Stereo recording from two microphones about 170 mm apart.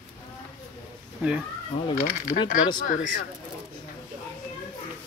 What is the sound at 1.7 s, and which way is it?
Speech, 35° left (ahead or behind).